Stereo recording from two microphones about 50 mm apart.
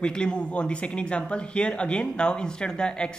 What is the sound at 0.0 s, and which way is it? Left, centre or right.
Speech, centre.